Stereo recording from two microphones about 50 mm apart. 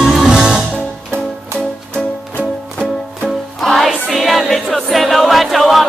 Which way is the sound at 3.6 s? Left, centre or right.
Centre.